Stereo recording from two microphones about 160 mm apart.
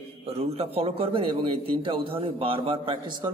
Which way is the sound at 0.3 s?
40° right (ahead or behind).